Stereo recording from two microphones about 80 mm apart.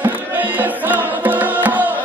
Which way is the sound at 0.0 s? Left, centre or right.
Right.